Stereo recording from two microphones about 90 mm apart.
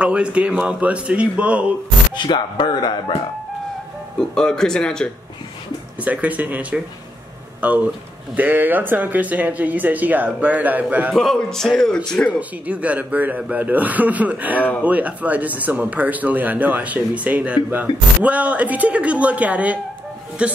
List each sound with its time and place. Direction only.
0.0 s speech: 10° right (ahead or behind)
2.1 s speech: 55° left (ahead or behind)
4.2 s speech: 5° left (ahead or behind)
6.0 s speech: 15° right (ahead or behind)
11.3 s a man's voice: 5° left (ahead or behind)
12.3 s speech: 15° right (ahead or behind)